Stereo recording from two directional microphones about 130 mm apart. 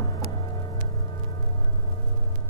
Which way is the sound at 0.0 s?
35° left (ahead or behind).